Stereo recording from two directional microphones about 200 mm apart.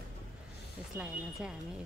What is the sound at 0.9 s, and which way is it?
Speech, 5° right (ahead or behind).